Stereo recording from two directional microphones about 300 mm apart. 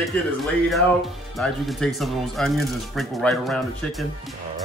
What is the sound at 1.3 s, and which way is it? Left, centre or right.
Speech, centre.